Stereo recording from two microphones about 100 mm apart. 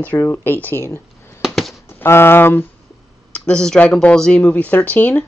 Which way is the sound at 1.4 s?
Centre (ahead or behind).